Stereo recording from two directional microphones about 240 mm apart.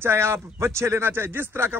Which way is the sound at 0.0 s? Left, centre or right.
Centre.